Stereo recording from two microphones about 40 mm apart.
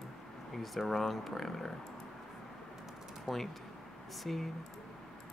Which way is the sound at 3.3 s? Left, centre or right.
Centre.